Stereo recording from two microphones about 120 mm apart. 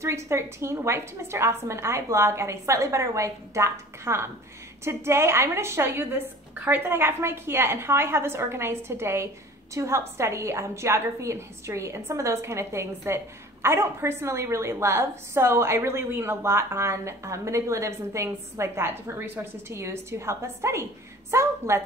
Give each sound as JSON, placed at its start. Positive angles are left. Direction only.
{"t": 0.0, "sound": "a woman's voice", "side_deg": -25}